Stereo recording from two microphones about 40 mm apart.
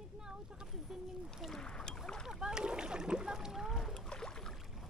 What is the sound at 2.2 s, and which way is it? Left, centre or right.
Splash, centre.